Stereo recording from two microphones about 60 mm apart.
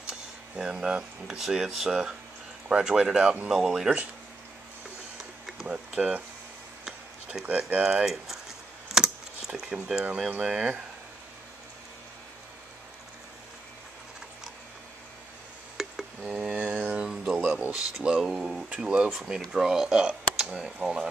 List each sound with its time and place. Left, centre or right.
0.6 s speech: centre
5.5 s a sound: centre
5.9 s speech: right
7.4 s speech: right
8.0 s speech: centre
8.9 s a sound: centre
10.4 s speech: centre
15.8 s a sound: centre
16.3 s mantra: right
17.5 s speech: centre
18.7 s speech: centre
19.0 s speech: centre